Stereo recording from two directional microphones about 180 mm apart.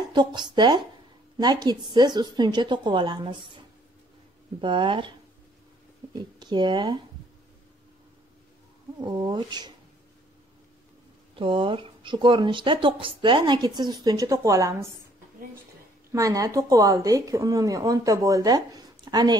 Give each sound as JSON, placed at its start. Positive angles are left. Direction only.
{"t": 0.1, "sound": "speech", "side_deg": -25}
{"t": 6.4, "sound": "speech", "side_deg": -25}
{"t": 9.0, "sound": "speech", "side_deg": -25}
{"t": 11.3, "sound": "speech", "side_deg": -30}
{"t": 16.1, "sound": "speech", "side_deg": -20}